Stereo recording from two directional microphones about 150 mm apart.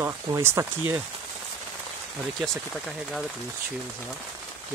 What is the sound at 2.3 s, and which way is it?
Speech, centre (ahead or behind).